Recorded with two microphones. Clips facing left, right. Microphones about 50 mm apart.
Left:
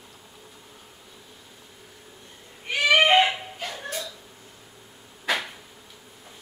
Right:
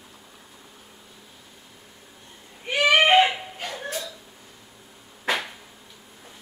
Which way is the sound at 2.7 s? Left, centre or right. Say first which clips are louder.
Right 1 dB; right.